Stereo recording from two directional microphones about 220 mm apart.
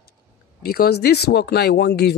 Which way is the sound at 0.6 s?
45° left (ahead or behind).